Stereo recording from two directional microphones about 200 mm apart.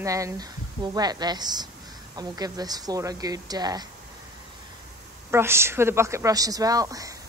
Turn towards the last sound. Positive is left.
turn(degrees=-15)  # may be behind; listen again after turning